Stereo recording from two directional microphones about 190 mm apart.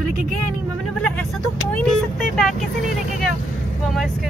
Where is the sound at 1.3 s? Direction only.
Centre (ahead or behind).